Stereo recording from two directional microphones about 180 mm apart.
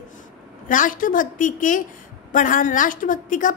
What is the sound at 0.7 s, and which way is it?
A woman's voice, 50° left (ahead or behind).